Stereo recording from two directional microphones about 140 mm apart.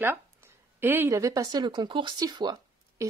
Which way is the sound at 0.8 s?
15° right (ahead or behind).